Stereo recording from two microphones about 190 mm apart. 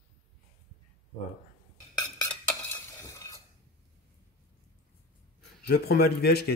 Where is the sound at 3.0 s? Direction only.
15° left (ahead or behind).